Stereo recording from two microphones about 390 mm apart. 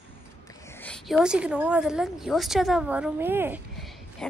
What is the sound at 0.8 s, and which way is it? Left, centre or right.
A woman's voice, centre.